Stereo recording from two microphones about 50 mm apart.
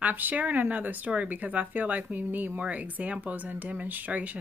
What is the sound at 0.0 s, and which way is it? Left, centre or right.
Speech, right.